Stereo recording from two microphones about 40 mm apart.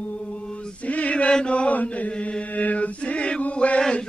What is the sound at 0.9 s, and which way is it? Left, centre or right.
Chant, left.